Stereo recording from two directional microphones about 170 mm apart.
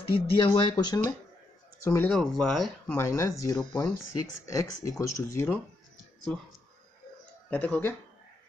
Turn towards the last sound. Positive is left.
turn(degrees=10)  # may be behind; listen again after turning